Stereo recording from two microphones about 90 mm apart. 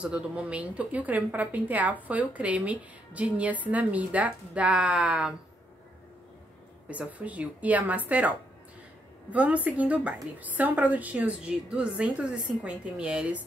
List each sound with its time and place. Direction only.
0.0 s a woman's voice: 15° right (ahead or behind)
6.9 s a woman's voice: 15° right (ahead or behind)